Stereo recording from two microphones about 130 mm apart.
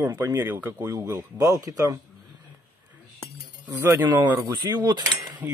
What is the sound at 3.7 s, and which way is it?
Speech, 25° right (ahead or behind).